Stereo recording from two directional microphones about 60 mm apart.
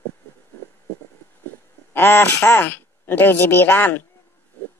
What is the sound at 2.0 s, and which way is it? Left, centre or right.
Speech, left.